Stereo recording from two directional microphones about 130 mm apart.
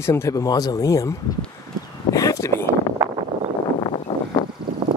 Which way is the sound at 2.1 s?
25° left (ahead or behind).